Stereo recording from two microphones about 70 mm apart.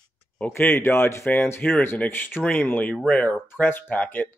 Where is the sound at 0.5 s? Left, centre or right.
Left.